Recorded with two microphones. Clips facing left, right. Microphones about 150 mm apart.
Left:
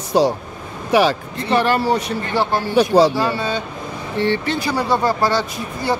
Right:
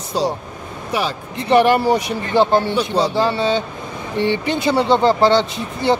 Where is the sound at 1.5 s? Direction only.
15° right (ahead or behind).